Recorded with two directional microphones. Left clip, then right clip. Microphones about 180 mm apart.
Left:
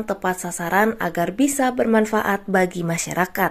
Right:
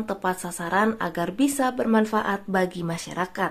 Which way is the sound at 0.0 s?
15° left (ahead or behind).